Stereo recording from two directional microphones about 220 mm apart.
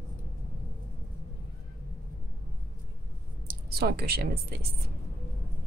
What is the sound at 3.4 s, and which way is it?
Speech, 45° right (ahead or behind).